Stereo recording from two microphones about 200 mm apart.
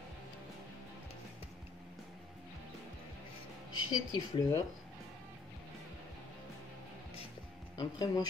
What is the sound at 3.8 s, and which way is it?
Speech, 20° left (ahead or behind).